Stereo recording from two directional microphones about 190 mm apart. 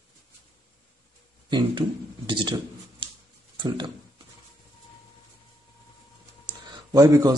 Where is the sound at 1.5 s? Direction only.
25° right (ahead or behind).